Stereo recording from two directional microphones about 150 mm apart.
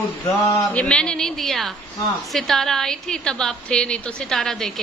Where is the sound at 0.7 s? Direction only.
10° left (ahead or behind).